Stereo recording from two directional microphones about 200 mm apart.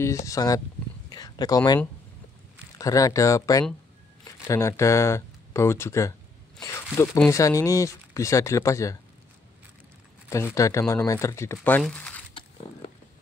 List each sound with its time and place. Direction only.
0.0 s speech: 15° left (ahead or behind)
2.8 s speech: 15° left (ahead or behind)
10.3 s speech: 15° left (ahead or behind)